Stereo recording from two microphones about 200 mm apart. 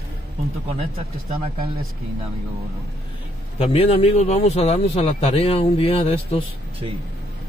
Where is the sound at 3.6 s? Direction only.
30° left (ahead or behind).